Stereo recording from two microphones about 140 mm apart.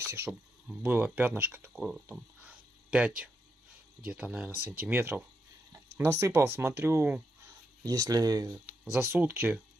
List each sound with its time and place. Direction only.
0.0 s speech: 15° right (ahead or behind)
2.0 s a sound: 10° right (ahead or behind)
4.0 s speech: 10° right (ahead or behind); by 8.5 s 30° right (ahead or behind)
8.9 s speech: 15° right (ahead or behind)